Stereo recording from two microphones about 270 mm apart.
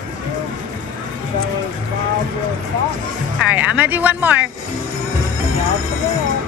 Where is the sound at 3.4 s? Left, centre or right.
Centre.